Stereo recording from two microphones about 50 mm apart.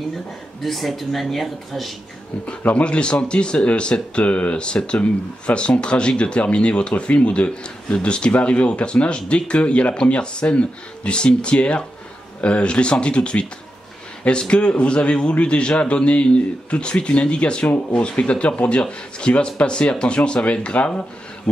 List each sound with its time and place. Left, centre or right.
0.6 s speech: centre
2.6 s speech: left